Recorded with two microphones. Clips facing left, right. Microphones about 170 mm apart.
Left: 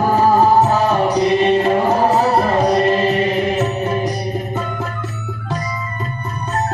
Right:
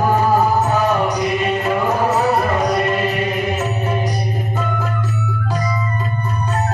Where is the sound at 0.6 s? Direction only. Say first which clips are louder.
Left 2 dB; 30° left (ahead or behind).